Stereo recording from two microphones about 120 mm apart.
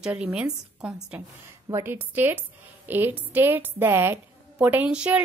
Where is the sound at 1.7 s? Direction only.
20° right (ahead or behind).